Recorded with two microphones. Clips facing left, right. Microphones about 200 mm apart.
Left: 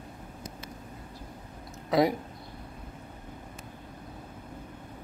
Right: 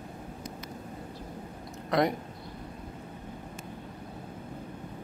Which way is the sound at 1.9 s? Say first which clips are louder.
Left 2 dB; 5° left (ahead or behind).